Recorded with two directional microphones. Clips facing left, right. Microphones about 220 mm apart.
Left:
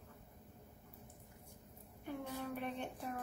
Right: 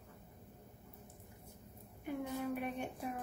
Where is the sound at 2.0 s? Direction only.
10° right (ahead or behind).